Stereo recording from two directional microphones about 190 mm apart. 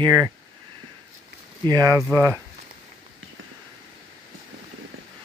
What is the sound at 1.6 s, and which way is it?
Speech, 20° right (ahead or behind).